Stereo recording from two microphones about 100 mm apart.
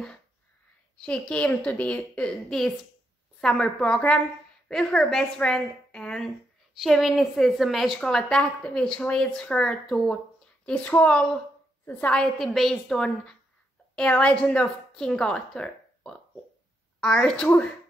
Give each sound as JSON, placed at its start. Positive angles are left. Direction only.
{"t": 1.0, "sound": "a woman's voice", "side_deg": 10}
{"t": 10.6, "sound": "speech", "side_deg": 15}
{"t": 11.8, "sound": "a woman's voice", "side_deg": 20}
{"t": 12.1, "sound": "a woman's voice", "side_deg": 0}